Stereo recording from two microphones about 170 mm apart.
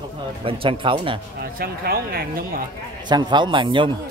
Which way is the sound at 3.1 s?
25° right (ahead or behind).